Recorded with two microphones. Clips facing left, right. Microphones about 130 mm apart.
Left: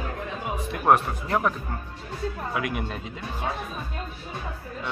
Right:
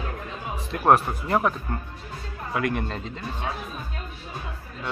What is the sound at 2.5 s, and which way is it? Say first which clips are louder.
Speech: right 2 dB; 5° left (ahead or behind).